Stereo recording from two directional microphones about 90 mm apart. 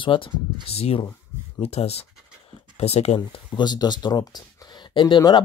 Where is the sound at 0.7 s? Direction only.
90° left.